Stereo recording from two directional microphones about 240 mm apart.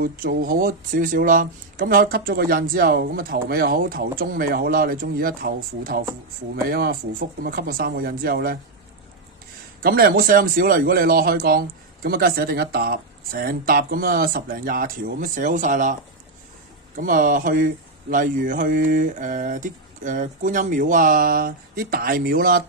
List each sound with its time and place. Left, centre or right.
0.0 s speech: right
9.8 s speech: right